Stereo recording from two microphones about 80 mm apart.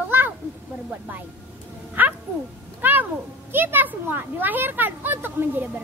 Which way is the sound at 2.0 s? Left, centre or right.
Right.